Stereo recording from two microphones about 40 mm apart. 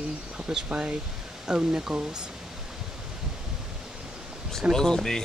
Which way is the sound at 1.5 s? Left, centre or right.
Centre.